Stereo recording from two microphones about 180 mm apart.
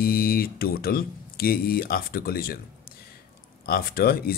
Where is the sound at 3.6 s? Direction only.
55° left (ahead or behind).